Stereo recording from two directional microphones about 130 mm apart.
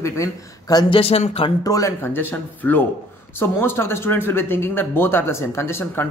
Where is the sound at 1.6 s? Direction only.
25° left (ahead or behind).